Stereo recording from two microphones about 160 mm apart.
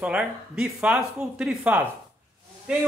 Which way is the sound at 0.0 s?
5° right (ahead or behind).